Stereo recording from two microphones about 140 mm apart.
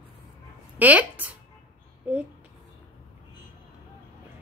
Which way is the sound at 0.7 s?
10° right (ahead or behind).